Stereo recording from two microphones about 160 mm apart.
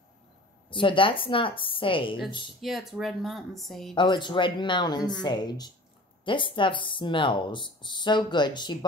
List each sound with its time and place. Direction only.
0.7 s a woman's voice: 30° left (ahead or behind)
2.6 s speech: centre (ahead or behind)
3.9 s speech: 30° left (ahead or behind)